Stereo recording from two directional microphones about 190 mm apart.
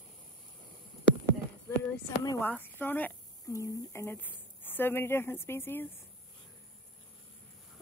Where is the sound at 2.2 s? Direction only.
15° left (ahead or behind).